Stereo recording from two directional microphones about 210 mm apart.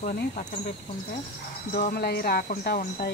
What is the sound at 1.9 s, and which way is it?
Speech, 50° left (ahead or behind).